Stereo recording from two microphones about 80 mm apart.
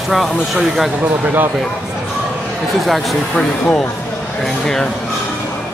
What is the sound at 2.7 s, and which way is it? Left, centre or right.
Speech, centre.